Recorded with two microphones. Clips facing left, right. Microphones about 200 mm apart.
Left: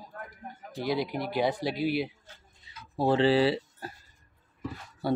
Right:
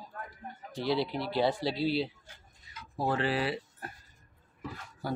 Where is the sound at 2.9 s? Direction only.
30° left (ahead or behind).